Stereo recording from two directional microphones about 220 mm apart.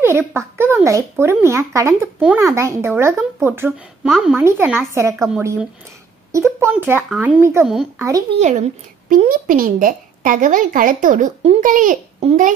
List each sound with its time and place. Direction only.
0.0 s speech: 10° right (ahead or behind)
8.4 s a woman's voice: 30° right (ahead or behind)